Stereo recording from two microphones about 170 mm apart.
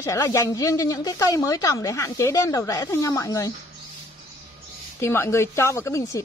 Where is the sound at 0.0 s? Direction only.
20° left (ahead or behind).